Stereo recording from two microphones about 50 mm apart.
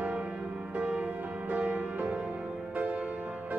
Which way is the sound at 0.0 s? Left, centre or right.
Right.